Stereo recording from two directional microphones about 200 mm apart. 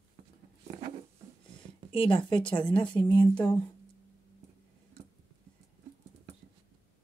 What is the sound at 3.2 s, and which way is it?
Speech, 5° left (ahead or behind).